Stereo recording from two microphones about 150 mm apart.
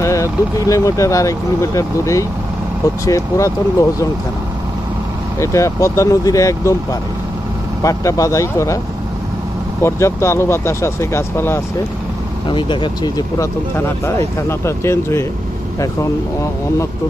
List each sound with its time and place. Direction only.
0.0 s speech: 20° left (ahead or behind)
5.4 s speech: 20° left (ahead or behind)
9.8 s speech: 20° left (ahead or behind)
12.4 s speech: 30° left (ahead or behind)
13.4 s speech: 20° left (ahead or behind)